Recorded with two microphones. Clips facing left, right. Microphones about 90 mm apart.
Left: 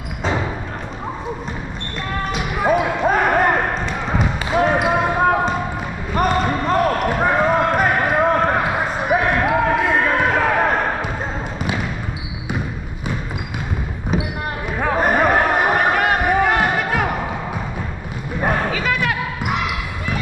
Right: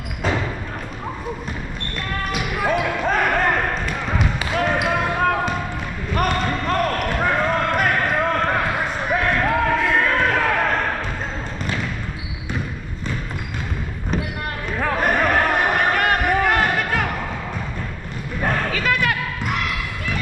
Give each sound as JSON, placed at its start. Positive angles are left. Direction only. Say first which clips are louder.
{"t": 0.2, "sound": "music", "louder": "left 1 dB", "side_deg": 15}
{"t": 2.8, "sound": "basketball bounce", "louder": "left 3 dB", "side_deg": 15}
{"t": 6.1, "sound": "basketball bounce", "louder": "left 3 dB", "side_deg": 5}
{"t": 14.1, "sound": "basketball bounce", "louder": "left 3 dB", "side_deg": 5}
{"t": 14.8, "sound": "a sound", "louder": "left 3 dB", "side_deg": 10}
{"t": 18.4, "sound": "basketball bounce", "louder": "left 2 dB", "side_deg": 10}